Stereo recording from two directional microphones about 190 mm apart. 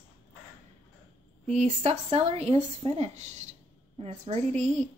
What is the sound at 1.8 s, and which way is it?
A woman's voice, 30° right (ahead or behind).